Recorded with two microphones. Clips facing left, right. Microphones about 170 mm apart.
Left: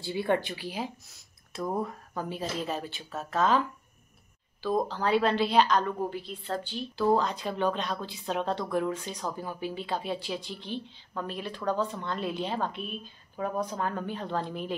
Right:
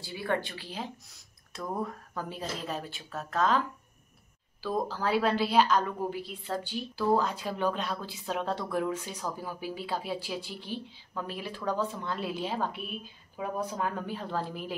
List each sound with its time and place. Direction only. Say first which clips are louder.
0.0 s a woman's voice: left 4 dB; 25° left (ahead or behind); by 14.8 s 5° right (ahead or behind)